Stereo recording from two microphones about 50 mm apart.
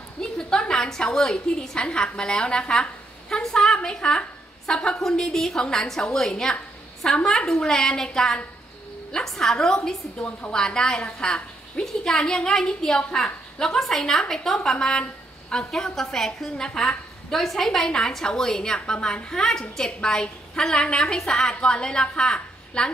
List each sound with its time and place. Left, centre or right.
0.2 s a woman's voice: centre